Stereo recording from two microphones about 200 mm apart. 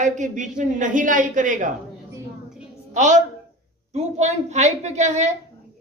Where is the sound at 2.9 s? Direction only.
35° right (ahead or behind).